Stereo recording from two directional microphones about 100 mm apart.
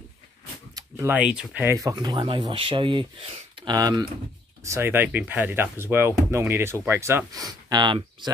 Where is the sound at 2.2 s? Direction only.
55° right (ahead or behind).